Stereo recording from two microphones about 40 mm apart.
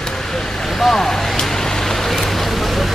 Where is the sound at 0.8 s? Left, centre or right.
Centre.